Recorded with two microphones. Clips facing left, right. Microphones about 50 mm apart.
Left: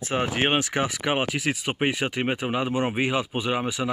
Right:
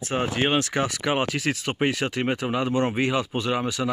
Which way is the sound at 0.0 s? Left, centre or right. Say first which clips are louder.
Even; left.